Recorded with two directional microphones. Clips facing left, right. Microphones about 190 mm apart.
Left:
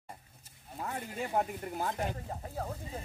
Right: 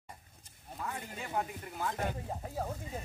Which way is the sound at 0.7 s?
40° left (ahead or behind).